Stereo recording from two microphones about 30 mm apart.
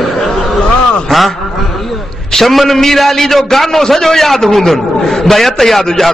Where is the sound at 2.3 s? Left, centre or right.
Centre.